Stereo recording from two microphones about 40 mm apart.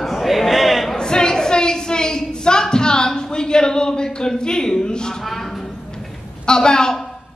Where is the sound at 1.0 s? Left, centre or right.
Centre.